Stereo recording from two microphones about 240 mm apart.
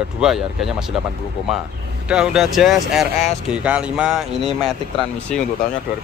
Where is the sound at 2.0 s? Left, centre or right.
Centre.